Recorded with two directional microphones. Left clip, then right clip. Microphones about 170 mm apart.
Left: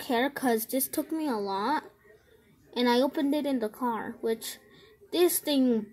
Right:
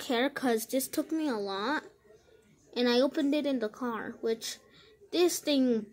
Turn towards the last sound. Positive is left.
turn(degrees=30)  # may be behind; listen again after turning